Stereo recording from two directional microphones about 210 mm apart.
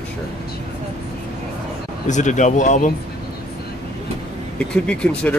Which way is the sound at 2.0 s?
35° left (ahead or behind).